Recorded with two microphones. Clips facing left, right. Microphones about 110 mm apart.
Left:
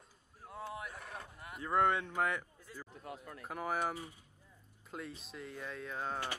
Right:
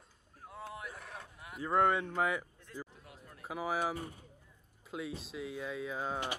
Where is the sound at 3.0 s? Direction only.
60° left (ahead or behind).